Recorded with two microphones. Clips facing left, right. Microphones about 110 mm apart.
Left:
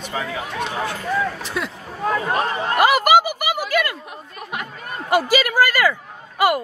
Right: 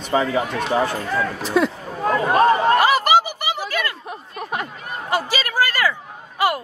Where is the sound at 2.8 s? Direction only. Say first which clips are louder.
Left 1 dB; 10° left (ahead or behind).